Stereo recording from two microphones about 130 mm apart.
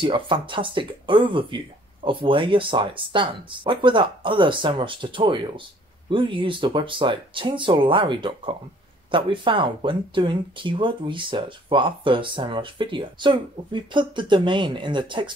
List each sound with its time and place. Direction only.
0.0 s speech: 40° right (ahead or behind)